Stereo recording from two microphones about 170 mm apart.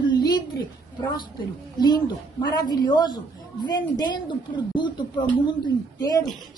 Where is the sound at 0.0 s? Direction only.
25° left (ahead or behind).